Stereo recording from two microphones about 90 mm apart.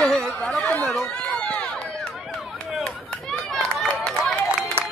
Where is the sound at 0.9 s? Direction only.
5° left (ahead or behind).